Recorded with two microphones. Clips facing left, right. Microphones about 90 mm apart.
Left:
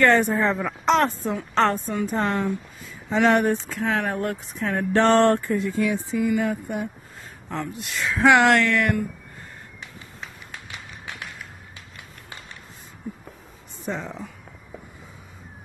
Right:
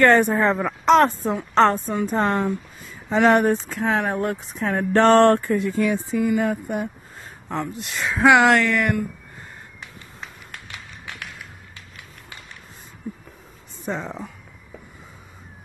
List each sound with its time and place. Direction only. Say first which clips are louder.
0.0 s speech: right 3 dB; 45° right (ahead or behind)
1.5 s speech: right 4 dB; 30° right (ahead or behind)
4.9 s a sound: right 3 dB; 55° right (ahead or behind)
6.3 s speech: right 2 dB; 45° right (ahead or behind)
7.4 s speech: right 3 dB; 30° right (ahead or behind)
8.2 s speech: right 1 dB; 5° right (ahead or behind)
13.8 s speech: right 2 dB; 35° right (ahead or behind)